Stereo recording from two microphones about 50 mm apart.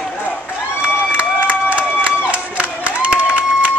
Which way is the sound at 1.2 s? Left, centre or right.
Right.